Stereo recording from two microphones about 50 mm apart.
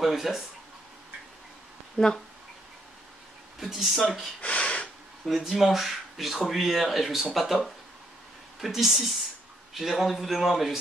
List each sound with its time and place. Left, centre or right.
0.0 s speech: centre
2.0 s speech: centre
3.5 s speech: centre
4.4 s a sound: left
5.4 s speech: centre